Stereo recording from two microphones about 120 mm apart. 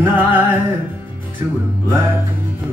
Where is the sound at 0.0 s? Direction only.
15° right (ahead or behind).